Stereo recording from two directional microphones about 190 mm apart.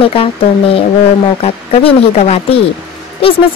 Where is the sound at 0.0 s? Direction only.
30° left (ahead or behind).